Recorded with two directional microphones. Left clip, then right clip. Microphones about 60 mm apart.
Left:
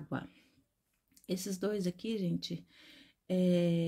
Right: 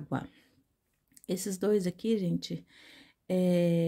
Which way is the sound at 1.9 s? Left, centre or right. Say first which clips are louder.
Right 6 dB; right.